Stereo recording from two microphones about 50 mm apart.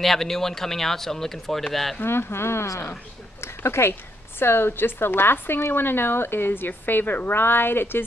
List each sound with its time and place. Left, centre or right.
0.0 s speech: centre
2.0 s speech: left
3.3 s a sound: left
4.4 s a woman's voice: left